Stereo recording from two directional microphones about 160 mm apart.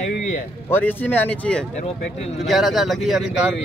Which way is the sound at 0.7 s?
10° left (ahead or behind).